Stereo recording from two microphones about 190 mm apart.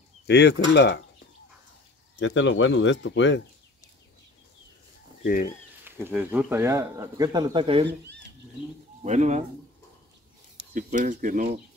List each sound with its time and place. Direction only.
0.3 s speech: 60° left (ahead or behind)
2.1 s speech: 75° left (ahead or behind)
5.2 s speech: 50° left (ahead or behind)
5.9 s speech: 10° right (ahead or behind); by 7.8 s 25° right (ahead or behind)
9.0 s speech: 40° right (ahead or behind)
10.7 s speech: 45° right (ahead or behind)